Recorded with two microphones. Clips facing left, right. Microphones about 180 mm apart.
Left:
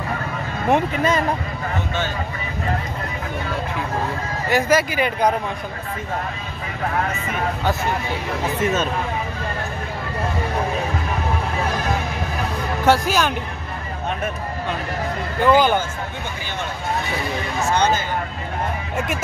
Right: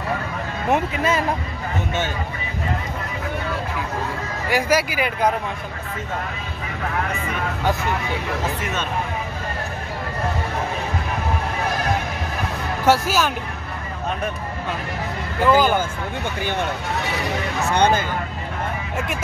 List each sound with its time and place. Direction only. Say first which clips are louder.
0.7 s speech: left 2 dB; 5° right (ahead or behind)
4.5 s speech: left 2 dB; 10° right (ahead or behind)
12.8 s speech: even; 10° right (ahead or behind)
15.4 s speech: left 1 dB; 5° right (ahead or behind)
17.6 s speech: right 1 dB; 60° right (ahead or behind)